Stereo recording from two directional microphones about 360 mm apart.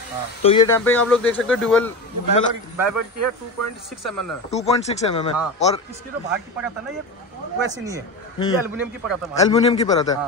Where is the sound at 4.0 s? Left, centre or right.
Centre.